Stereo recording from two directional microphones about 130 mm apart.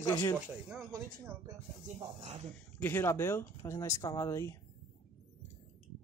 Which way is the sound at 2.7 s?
15° left (ahead or behind).